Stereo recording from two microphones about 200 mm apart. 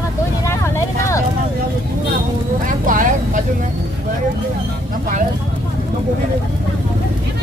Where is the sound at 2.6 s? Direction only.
40° right (ahead or behind).